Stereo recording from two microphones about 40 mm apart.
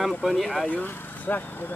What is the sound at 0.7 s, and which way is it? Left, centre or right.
Speech, left.